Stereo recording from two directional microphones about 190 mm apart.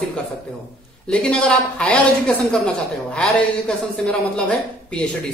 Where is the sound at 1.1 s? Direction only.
5° left (ahead or behind).